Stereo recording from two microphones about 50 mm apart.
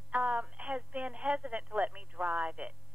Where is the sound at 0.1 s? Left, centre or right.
Right.